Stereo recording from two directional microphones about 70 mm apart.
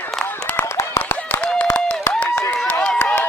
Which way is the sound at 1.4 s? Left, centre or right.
Centre.